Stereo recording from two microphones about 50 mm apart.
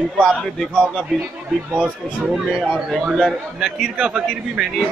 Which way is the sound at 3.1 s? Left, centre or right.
Centre.